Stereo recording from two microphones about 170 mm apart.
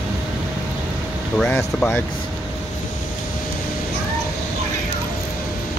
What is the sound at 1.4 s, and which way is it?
Speech, 5° left (ahead or behind).